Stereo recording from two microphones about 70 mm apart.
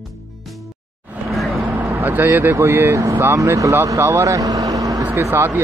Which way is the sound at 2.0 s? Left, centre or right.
Right.